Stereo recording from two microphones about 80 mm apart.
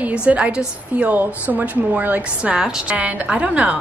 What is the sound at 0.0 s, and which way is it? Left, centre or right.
A woman's voice, centre.